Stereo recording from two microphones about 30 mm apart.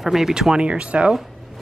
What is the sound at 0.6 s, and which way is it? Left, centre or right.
Speech, right.